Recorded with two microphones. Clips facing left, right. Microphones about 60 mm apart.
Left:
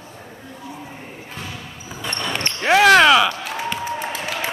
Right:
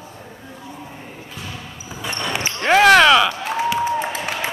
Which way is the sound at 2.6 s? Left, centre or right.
Centre.